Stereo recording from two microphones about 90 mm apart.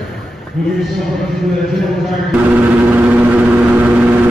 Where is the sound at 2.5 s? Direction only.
20° right (ahead or behind).